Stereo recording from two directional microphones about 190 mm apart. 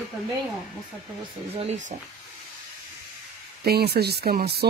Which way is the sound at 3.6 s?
55° right (ahead or behind).